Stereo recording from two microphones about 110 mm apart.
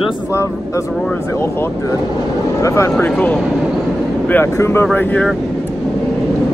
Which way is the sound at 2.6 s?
25° left (ahead or behind).